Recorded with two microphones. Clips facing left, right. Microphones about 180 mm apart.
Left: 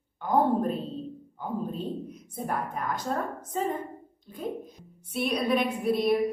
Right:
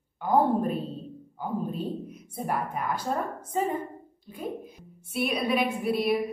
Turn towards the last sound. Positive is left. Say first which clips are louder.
# left 1 dB
turn(degrees=-5)  # may be behind; listen again after turning